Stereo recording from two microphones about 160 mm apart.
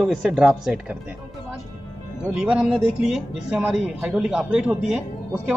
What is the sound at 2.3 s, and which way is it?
Speech, 5° right (ahead or behind).